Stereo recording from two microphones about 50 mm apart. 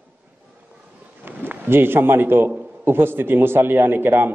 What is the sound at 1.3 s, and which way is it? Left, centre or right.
A man's voice, right.